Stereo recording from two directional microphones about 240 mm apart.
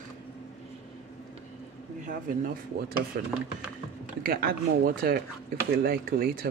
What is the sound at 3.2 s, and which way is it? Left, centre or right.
Speech, right.